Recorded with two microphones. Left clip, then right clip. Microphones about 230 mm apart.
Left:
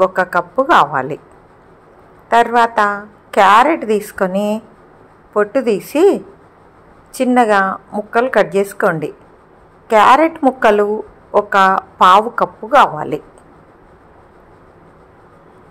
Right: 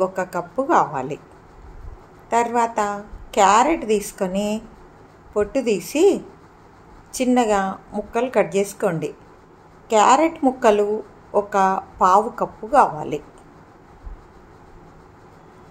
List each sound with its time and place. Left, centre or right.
0.0 s a woman's voice: centre
2.2 s a woman's voice: centre